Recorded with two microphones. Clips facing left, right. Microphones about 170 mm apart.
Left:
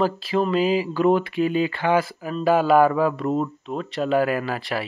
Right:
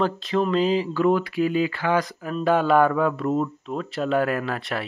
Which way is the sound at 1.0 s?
25° left (ahead or behind).